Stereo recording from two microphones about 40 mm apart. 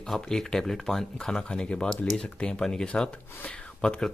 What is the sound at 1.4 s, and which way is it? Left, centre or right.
Speech, left.